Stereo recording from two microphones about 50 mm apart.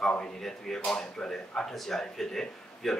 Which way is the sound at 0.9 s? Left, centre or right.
Centre.